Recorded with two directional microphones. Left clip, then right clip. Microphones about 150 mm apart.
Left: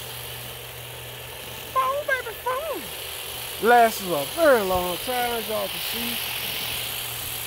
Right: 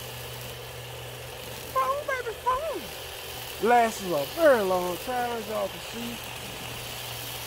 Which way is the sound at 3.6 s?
85° left.